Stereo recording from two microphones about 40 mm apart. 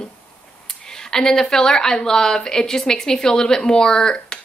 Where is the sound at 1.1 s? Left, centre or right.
Centre.